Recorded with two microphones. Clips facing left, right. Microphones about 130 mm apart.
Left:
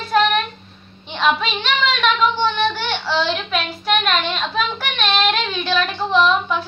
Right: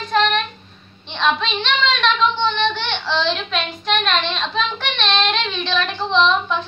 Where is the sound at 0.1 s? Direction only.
10° left (ahead or behind).